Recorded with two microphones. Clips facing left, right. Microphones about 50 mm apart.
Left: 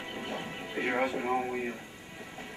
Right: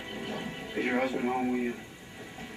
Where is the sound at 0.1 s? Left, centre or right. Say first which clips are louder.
Right 2 dB; centre.